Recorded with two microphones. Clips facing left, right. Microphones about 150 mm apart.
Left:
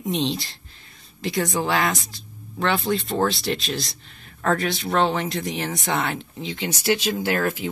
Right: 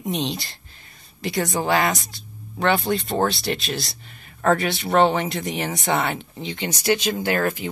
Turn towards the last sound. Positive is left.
turn(degrees=0)  # may be behind; listen again after turning